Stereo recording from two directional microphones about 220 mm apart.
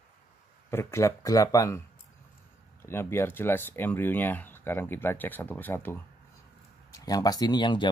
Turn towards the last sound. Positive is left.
turn(degrees=20)  # may be behind; listen again after turning